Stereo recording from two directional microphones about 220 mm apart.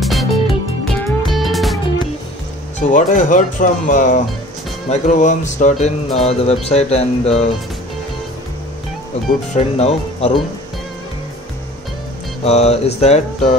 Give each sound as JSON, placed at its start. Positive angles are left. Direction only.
{"t": 0.0, "sound": "music", "side_deg": 0}
{"t": 2.8, "sound": "speech", "side_deg": 35}
{"t": 6.2, "sound": "music", "side_deg": 30}
{"t": 9.5, "sound": "music", "side_deg": 30}
{"t": 12.4, "sound": "music", "side_deg": 30}